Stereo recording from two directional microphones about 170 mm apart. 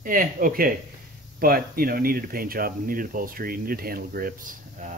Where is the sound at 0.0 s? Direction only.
55° right (ahead or behind).